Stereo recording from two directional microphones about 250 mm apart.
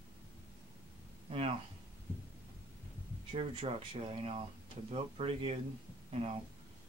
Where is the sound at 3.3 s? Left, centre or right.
Right.